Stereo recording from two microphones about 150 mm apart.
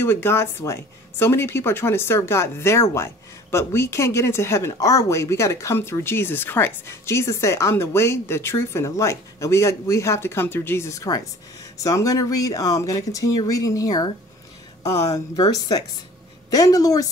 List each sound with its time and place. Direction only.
0.0 s speech: 15° left (ahead or behind)